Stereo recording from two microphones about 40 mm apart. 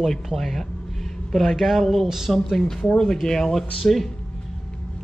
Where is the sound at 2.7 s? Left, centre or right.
Centre.